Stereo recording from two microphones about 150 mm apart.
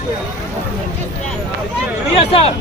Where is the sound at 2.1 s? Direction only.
40° left (ahead or behind).